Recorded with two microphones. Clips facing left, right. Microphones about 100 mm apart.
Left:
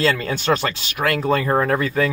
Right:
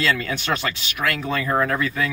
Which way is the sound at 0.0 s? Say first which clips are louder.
Left 3 dB; 35° left (ahead or behind).